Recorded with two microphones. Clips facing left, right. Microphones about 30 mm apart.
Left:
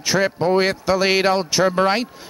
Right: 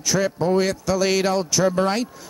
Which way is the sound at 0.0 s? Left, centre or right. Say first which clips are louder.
Left 2 dB; left.